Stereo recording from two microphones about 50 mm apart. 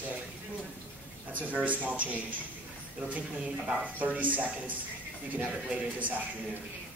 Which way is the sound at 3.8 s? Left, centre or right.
Right.